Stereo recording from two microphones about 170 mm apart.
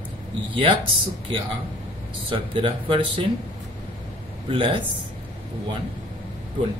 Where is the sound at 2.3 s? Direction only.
30° right (ahead or behind).